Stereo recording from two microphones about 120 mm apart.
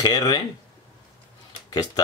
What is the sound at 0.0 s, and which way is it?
Speech, 30° left (ahead or behind).